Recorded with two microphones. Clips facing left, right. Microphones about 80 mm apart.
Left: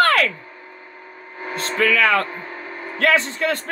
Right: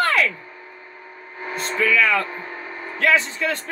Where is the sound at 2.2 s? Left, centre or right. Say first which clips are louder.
Left 1 dB; centre.